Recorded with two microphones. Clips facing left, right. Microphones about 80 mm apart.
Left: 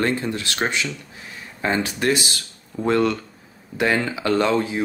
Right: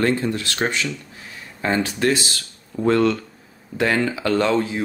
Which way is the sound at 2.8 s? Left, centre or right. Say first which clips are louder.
Right 2 dB; centre.